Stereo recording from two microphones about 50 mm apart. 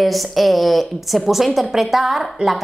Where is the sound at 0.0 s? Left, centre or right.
Centre.